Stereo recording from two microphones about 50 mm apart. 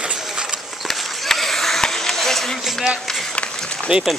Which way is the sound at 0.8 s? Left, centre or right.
Centre.